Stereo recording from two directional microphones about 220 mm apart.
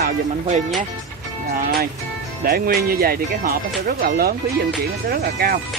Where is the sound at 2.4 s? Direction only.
45° right (ahead or behind).